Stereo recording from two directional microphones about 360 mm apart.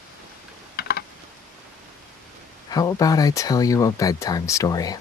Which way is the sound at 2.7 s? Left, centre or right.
Centre.